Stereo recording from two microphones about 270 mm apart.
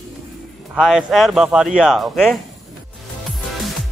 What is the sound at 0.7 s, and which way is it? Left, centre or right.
Speech, centre.